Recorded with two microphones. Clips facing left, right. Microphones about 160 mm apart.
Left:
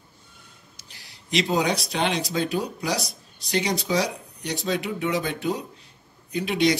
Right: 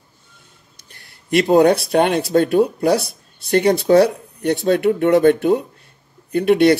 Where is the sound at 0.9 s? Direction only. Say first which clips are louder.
Right 8 dB; 55° right (ahead or behind).